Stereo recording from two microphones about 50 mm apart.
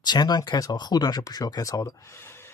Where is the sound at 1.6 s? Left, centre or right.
Left.